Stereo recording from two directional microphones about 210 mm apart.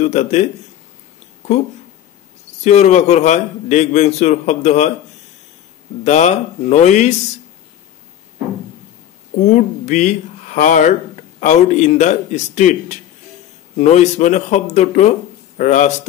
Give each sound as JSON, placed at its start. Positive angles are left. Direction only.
{"t": 0.0, "sound": "a man's voice", "side_deg": 35}
{"t": 2.6, "sound": "a man's voice", "side_deg": 35}
{"t": 6.0, "sound": "a man's voice", "side_deg": 35}
{"t": 9.4, "sound": "a man's voice", "side_deg": 35}